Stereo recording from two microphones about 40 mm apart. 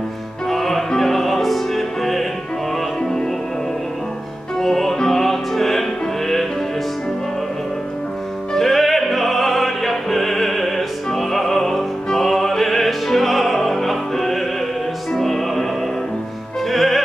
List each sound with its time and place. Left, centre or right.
0.5 s music: centre
3.0 s music: centre
4.6 s music: centre
8.5 s music: centre
16.6 s music: centre